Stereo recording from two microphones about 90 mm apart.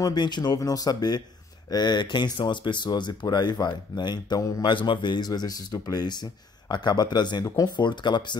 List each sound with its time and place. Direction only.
0.0 s speech: 50° left (ahead or behind)
7.7 s speech: 60° left (ahead or behind)